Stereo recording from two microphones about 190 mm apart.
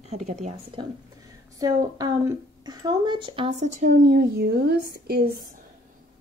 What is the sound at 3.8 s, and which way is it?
Speech, 45° right (ahead or behind).